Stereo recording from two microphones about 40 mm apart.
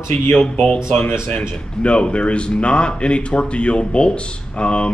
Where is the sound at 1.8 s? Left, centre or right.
Left.